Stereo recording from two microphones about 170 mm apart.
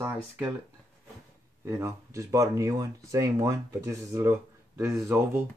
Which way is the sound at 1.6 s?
15° right (ahead or behind).